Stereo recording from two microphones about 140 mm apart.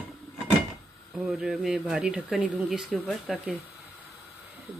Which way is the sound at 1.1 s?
5° right (ahead or behind).